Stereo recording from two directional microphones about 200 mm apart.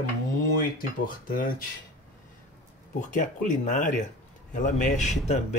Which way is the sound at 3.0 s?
40° left (ahead or behind).